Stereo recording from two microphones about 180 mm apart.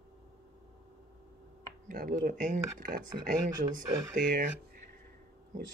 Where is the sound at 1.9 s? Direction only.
50° right (ahead or behind).